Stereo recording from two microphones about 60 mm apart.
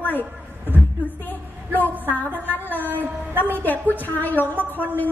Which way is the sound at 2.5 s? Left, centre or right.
Left.